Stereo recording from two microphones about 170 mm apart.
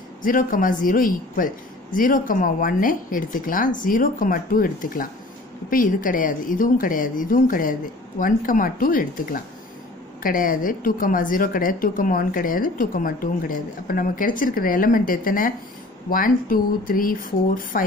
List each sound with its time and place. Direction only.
0.2 s speech: 55° left (ahead or behind)